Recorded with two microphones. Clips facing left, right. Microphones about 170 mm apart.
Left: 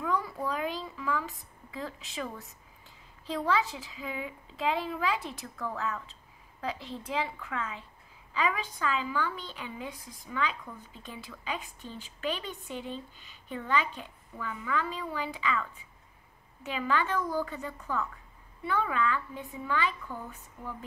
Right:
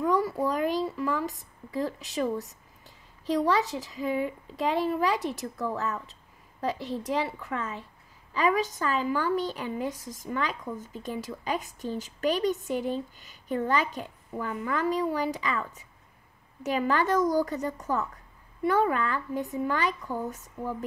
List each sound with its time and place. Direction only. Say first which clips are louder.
0.0 s a woman's voice: right 6 dB; 40° right (ahead or behind)